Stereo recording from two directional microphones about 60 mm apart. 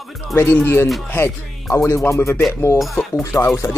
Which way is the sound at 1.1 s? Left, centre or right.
Left.